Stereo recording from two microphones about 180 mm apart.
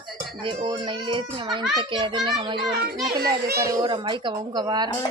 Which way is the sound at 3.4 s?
60° right (ahead or behind).